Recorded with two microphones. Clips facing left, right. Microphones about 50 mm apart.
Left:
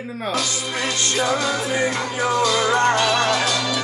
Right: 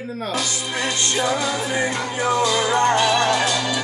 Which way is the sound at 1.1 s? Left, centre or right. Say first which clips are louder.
Left 1 dB; centre.